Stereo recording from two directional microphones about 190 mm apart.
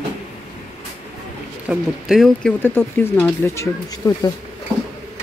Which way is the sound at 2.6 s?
10° left (ahead or behind).